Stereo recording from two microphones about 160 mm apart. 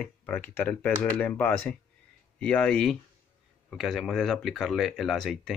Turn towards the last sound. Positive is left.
turn(degrees=0)  # may be behind; listen again after turning